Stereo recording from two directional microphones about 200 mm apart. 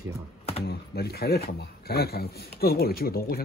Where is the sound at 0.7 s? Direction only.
55° left (ahead or behind).